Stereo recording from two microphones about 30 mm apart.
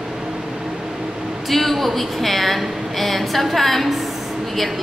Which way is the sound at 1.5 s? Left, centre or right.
Centre.